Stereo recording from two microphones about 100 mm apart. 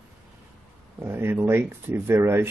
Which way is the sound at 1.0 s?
25° right (ahead or behind).